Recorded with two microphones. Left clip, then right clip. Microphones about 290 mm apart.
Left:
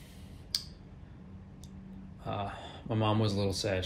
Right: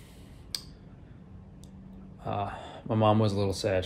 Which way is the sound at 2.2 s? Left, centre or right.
Centre.